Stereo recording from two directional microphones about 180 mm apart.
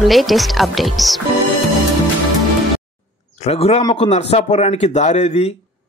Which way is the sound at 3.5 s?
35° left (ahead or behind).